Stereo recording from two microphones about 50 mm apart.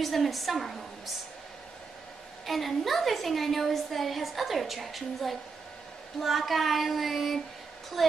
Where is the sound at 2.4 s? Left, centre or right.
Centre.